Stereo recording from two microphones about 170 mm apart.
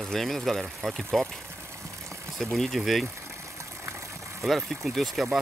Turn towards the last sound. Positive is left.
turn(degrees=0)  # may be behind; listen again after turning